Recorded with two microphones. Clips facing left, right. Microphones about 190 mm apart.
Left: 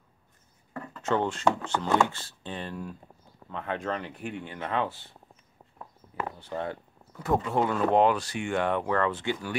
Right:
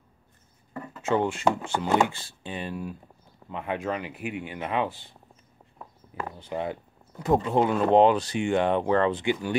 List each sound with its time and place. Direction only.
0.7 s speech: 10° right (ahead or behind)
6.4 s speech: 15° right (ahead or behind)